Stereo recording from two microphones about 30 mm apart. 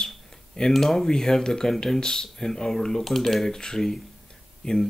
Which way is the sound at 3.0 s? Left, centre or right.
Centre.